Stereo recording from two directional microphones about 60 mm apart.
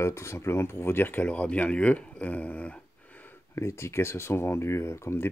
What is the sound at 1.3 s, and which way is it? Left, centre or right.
Speech, left.